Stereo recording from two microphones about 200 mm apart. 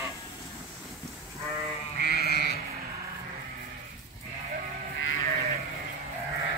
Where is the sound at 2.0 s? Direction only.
50° left (ahead or behind).